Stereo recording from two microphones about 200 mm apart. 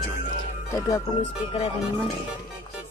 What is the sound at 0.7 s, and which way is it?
Speech, 15° left (ahead or behind).